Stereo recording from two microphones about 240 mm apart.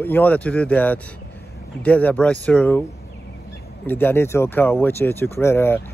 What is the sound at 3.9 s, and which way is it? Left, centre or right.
Speech, centre.